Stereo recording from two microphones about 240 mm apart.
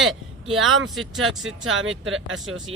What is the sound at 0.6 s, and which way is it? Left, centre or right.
A man's voice, right.